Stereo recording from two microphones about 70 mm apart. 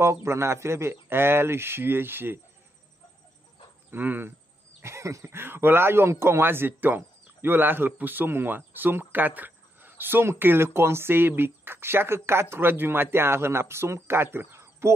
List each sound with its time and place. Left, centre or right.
0.0 s speech: right
3.9 s speech: right
4.8 s speech: right